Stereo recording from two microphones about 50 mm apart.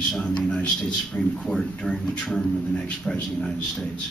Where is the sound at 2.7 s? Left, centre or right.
Centre.